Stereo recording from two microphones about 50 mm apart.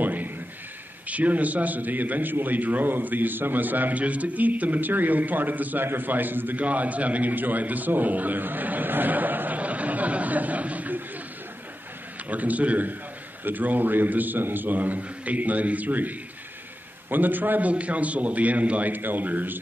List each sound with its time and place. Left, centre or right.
0.0 s a sound: right
1.0 s a man's voice: right
12.3 s a man's voice: right